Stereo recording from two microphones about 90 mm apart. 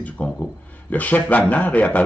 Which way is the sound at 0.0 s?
15° left (ahead or behind).